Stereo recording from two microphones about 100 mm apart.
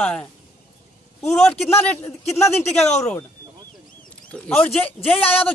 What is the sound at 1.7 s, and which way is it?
Speech, 15° left (ahead or behind).